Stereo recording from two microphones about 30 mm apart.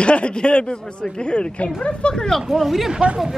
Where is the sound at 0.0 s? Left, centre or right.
Left.